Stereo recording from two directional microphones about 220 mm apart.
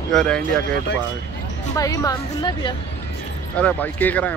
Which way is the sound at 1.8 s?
15° left (ahead or behind).